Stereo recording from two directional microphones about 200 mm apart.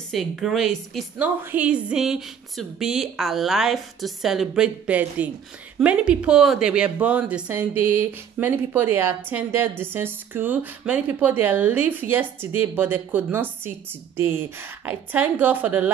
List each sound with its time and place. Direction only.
0.1 s a woman's voice: centre (ahead or behind)